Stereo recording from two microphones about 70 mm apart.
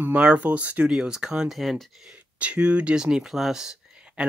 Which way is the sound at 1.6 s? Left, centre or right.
Centre.